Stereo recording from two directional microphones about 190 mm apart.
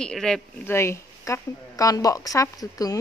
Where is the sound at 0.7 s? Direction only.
15° left (ahead or behind).